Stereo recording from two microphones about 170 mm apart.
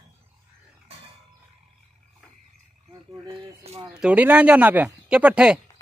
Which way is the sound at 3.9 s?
10° right (ahead or behind).